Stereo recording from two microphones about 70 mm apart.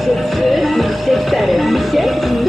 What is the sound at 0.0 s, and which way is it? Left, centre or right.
Music, centre.